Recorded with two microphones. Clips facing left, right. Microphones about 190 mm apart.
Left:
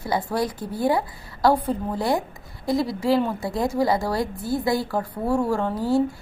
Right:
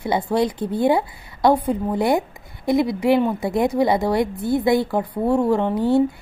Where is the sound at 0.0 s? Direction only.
25° right (ahead or behind).